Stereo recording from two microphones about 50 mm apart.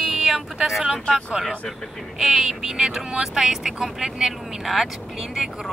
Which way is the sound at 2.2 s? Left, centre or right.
Centre.